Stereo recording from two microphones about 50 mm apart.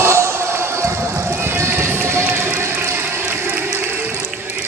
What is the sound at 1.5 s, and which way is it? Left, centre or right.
Run, right.